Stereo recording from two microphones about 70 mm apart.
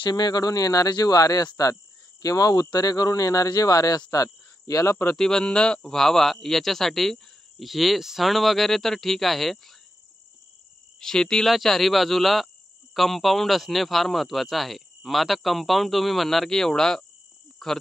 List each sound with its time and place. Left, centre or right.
0.1 s speech: left
2.2 s speech: left
5.1 s speech: centre
11.0 s speech: centre